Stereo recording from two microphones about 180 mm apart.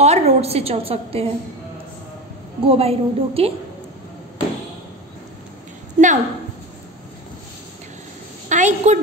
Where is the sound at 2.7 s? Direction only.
35° right (ahead or behind).